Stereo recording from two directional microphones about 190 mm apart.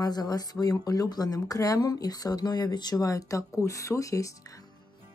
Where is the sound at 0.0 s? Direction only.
20° left (ahead or behind).